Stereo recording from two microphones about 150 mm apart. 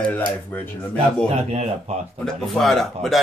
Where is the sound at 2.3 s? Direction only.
Centre (ahead or behind).